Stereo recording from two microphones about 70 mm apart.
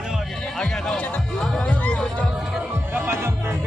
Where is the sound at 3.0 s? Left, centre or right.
Right.